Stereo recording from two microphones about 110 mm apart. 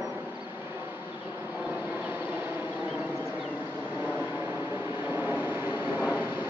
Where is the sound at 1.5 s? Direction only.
15° right (ahead or behind).